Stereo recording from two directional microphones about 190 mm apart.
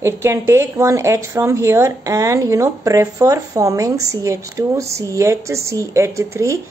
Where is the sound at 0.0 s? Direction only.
15° right (ahead or behind).